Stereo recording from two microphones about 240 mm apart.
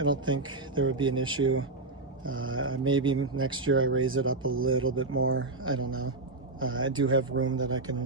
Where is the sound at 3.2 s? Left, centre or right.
Right.